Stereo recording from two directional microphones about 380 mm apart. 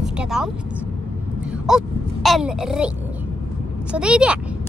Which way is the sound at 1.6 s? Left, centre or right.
Centre.